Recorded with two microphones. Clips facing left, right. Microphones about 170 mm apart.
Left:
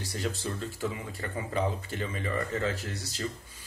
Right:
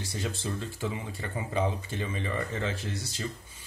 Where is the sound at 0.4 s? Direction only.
25° right (ahead or behind).